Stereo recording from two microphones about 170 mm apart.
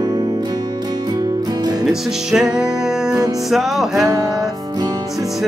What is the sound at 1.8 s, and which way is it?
Music, 5° right (ahead or behind).